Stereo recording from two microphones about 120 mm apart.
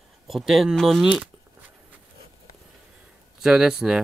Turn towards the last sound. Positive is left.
turn(degrees=-5)  # may be behind; listen again after turning